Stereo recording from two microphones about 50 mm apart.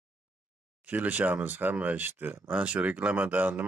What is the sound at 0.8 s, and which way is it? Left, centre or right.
A man's voice, right.